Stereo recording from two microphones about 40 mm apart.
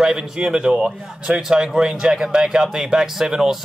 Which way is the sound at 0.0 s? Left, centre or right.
Centre.